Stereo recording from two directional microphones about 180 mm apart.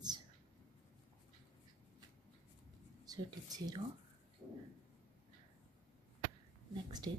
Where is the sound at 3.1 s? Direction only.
20° right (ahead or behind).